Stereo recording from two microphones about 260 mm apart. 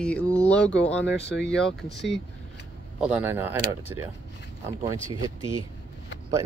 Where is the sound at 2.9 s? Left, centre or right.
Centre.